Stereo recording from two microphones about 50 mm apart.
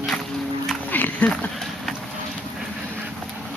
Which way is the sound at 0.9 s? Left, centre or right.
Left.